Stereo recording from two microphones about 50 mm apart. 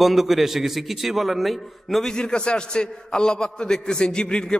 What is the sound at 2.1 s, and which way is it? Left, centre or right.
A man's voice, centre.